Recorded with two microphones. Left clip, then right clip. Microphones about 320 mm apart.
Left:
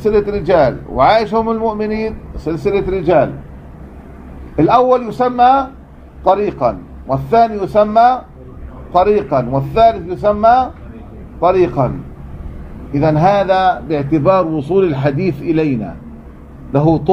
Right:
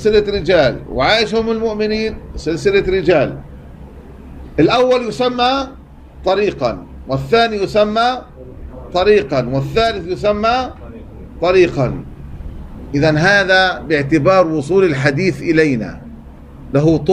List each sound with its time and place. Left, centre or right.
0.0 s a man's voice: left
4.6 s a man's voice: centre
12.9 s a man's voice: centre